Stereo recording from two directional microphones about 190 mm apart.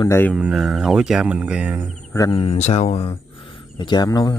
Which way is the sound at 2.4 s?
35° left (ahead or behind).